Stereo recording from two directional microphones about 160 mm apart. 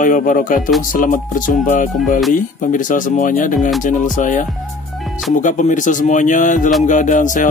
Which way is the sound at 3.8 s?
50° left (ahead or behind).